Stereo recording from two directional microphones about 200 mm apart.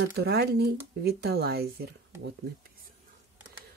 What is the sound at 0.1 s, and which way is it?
Speech, 50° right (ahead or behind).